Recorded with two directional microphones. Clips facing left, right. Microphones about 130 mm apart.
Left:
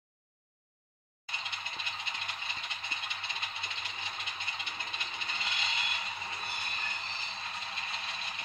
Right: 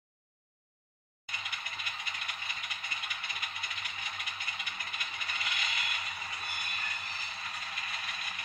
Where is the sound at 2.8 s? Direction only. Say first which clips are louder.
Left 1 dB; 25° left (ahead or behind).